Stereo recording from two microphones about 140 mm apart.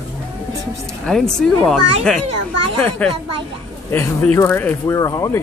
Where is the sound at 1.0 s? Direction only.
5° left (ahead or behind); by 5.4 s 25° left (ahead or behind).